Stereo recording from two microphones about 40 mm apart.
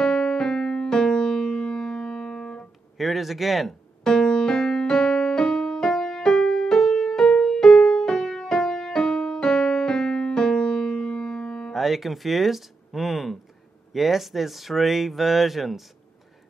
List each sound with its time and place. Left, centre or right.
0.0 s music: centre
3.0 s speech: centre
4.0 s music: centre
11.7 s speech: centre